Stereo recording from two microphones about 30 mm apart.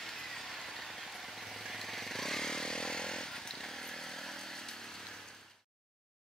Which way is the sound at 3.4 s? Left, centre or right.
Centre.